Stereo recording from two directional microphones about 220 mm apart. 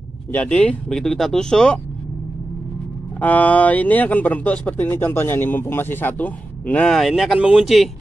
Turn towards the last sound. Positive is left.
turn(degrees=0)  # may be behind; listen again after turning